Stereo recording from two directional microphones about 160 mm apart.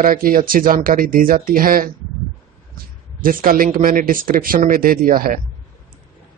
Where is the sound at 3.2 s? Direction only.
60° right (ahead or behind).